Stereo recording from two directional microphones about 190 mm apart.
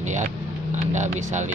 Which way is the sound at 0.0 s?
40° right (ahead or behind).